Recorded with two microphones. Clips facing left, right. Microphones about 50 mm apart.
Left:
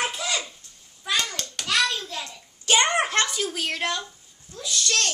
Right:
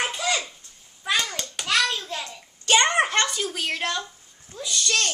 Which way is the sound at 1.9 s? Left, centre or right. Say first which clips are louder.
Right 1 dB; centre.